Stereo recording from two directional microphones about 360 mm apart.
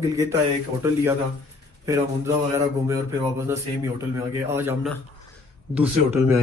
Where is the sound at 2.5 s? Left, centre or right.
Centre.